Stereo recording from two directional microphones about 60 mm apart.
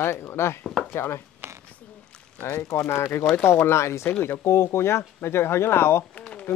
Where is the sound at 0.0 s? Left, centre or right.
Left.